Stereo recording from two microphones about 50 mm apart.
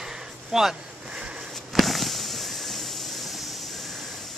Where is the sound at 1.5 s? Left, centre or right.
Centre.